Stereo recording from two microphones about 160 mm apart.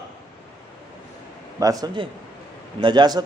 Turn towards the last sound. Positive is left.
turn(degrees=-25)  # may be behind; listen again after turning